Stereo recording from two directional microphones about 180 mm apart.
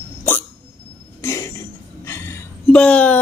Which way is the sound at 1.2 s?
15° left (ahead or behind).